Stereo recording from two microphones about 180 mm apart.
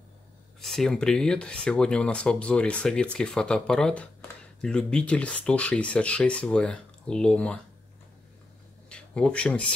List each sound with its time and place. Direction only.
0.6 s speech: centre (ahead or behind)
8.8 s speech: 5° left (ahead or behind)